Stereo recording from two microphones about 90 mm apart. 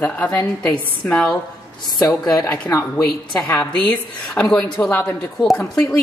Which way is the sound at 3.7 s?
10° left (ahead or behind).